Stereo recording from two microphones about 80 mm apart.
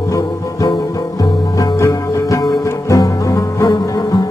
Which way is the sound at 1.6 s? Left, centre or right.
Left.